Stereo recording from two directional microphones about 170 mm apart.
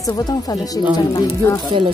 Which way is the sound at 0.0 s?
20° left (ahead or behind).